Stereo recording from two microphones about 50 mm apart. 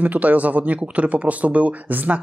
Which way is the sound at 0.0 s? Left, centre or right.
Right.